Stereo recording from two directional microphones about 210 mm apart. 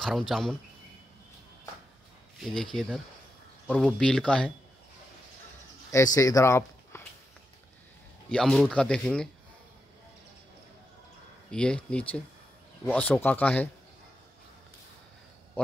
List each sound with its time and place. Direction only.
0.3 s speech: centre (ahead or behind)
2.4 s speech: 5° left (ahead or behind)
5.9 s speech: 15° left (ahead or behind)
8.3 s speech: centre (ahead or behind)
11.5 s speech: 5° left (ahead or behind)